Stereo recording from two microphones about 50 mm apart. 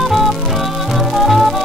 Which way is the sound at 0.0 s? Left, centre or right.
Centre.